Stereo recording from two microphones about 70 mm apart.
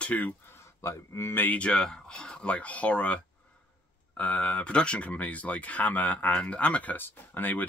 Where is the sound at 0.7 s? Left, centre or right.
Left; by 3.2 s centre.